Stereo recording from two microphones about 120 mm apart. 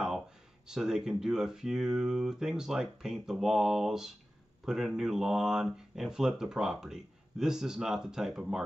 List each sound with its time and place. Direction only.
0.7 s speech: 5° right (ahead or behind)